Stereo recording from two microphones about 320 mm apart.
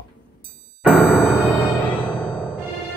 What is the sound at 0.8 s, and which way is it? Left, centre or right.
Music, centre.